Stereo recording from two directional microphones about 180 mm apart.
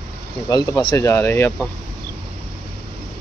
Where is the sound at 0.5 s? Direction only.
25° left (ahead or behind).